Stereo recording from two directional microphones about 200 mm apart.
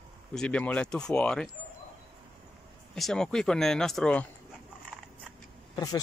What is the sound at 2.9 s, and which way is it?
Speech, 5° left (ahead or behind).